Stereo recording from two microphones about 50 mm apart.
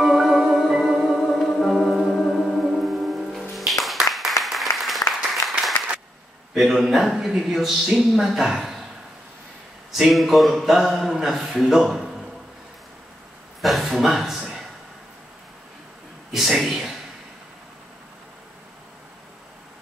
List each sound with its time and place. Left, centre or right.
0.0 s music: centre
4.4 s applause: centre
6.6 s a man's voice: centre
9.9 s a man's voice: centre
13.6 s a sound: centre
16.3 s a sound: centre